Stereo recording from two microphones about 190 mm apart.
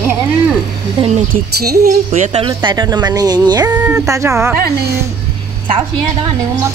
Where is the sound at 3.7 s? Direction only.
10° right (ahead or behind).